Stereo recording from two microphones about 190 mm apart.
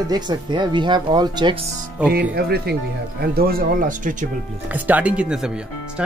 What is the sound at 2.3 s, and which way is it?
Speech, 55° right (ahead or behind).